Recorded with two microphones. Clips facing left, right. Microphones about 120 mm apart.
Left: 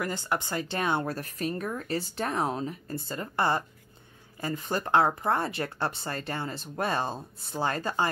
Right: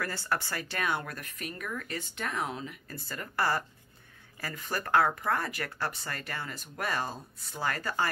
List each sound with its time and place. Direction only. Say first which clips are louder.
0.0 s speech: left 3 dB; 20° left (ahead or behind)